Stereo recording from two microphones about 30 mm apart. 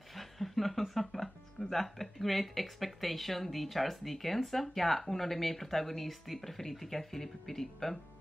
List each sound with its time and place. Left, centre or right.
0.1 s chuckle: centre
0.9 s speech: centre